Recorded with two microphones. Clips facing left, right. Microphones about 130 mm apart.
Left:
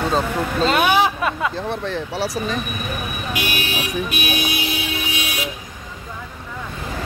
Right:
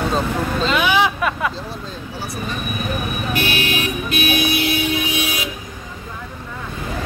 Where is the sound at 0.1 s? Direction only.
40° left (ahead or behind).